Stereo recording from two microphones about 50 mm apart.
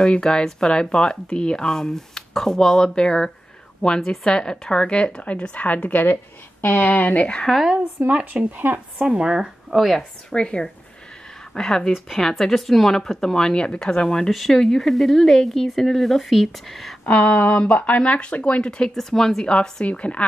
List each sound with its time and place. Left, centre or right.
0.0 s speech: centre; by 6.1 s left
6.6 s speech: left
8.3 s speech: right
9.0 s speech: centre
9.7 s a woman's voice: centre
10.3 s speech: centre
14.3 s speech: centre
17.0 s speech: left; by 19.5 s centre
19.5 s speech: left